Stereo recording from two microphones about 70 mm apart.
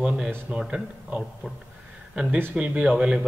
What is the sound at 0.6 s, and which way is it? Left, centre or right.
A man's voice, centre.